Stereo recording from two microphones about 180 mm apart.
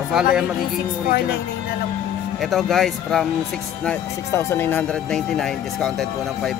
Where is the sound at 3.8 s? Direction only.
15° left (ahead or behind).